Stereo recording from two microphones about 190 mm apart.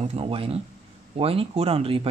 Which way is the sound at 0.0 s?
35° right (ahead or behind).